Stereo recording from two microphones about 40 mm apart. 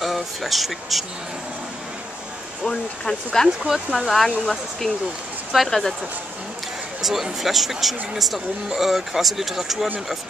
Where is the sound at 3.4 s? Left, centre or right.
Centre.